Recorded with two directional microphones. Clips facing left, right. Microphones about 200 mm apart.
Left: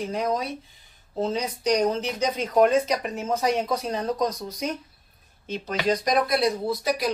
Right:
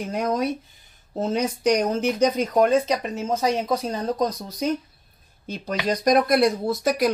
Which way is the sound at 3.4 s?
30° right (ahead or behind).